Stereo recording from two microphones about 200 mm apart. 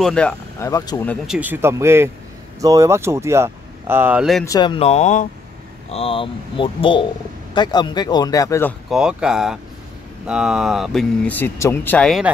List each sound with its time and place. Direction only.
0.0 s speech: 5° left (ahead or behind)
0.7 s speech: 15° left (ahead or behind)
1.0 s speech: centre (ahead or behind)
4.5 s speech: 20° left (ahead or behind)
8.9 s speech: 5° right (ahead or behind)